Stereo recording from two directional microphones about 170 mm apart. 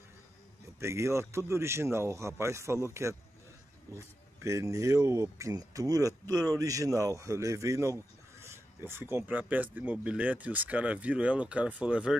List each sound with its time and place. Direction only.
0.7 s speech: 15° right (ahead or behind)